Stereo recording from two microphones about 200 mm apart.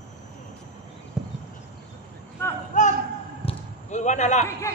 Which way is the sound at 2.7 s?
40° left (ahead or behind).